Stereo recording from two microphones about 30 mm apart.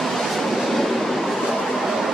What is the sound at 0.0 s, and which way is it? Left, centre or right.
Vehicle, centre.